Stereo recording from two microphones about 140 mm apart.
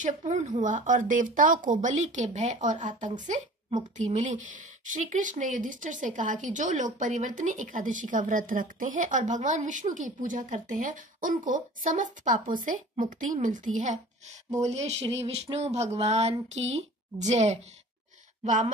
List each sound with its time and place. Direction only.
0.0 s a woman's voice: 60° right (ahead or behind)
14.6 s speech: 50° right (ahead or behind)